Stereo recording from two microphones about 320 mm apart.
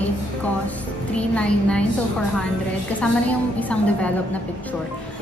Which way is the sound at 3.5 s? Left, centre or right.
Centre.